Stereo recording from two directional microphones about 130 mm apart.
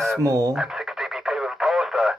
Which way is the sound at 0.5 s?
5° right (ahead or behind).